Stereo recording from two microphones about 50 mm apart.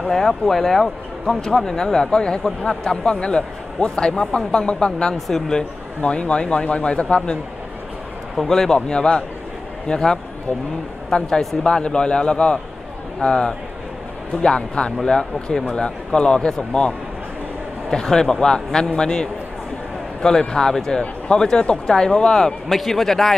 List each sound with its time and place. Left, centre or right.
0.1 s a man's voice: centre
5.9 s a man's voice: left
8.5 s a man's voice: centre
18.0 s speech: centre